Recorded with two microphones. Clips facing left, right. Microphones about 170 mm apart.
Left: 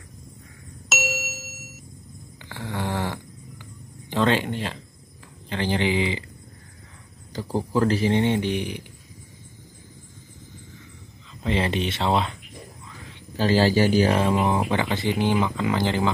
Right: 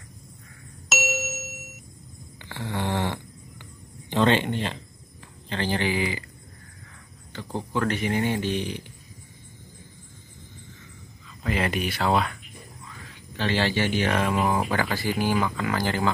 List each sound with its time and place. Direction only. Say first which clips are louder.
0.9 s ding: right 1 dB; centre (ahead or behind)
2.5 s snoring: even; 5° left (ahead or behind)
4.1 s speech: even; centre (ahead or behind)
5.5 s speech: left 2 dB; 15° left (ahead or behind)
7.3 s speech: left 5 dB; 35° left (ahead or behind); by 8.8 s 15° left (ahead or behind)
11.4 s speech: left 2 dB; 25° left (ahead or behind)
13.4 s a man's voice: left 6 dB; 40° left (ahead or behind); by 16.1 s 20° left (ahead or behind)